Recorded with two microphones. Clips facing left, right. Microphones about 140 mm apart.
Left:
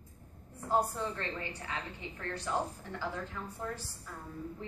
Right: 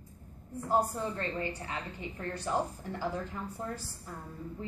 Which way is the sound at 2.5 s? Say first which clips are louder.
Right 3 dB; 30° right (ahead or behind).